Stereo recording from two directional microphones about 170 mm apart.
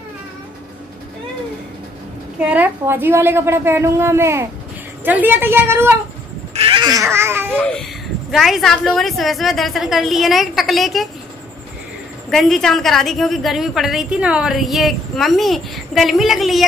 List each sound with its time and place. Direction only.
2.3 s a woman's voice: 10° right (ahead or behind)
6.5 s a sound: 30° right (ahead or behind); by 7.4 s 15° right (ahead or behind)
7.5 s a woman's voice: 5° left (ahead or behind)
12.3 s a woman's voice: 5° left (ahead or behind)